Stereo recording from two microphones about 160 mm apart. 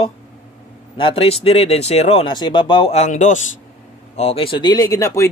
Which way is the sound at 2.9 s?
45° left (ahead or behind).